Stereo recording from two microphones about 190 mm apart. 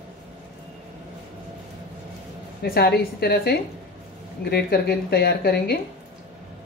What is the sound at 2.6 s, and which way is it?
Speech, 55° left (ahead or behind).